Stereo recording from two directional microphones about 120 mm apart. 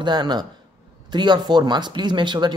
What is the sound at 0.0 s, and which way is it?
Speech, 35° right (ahead or behind).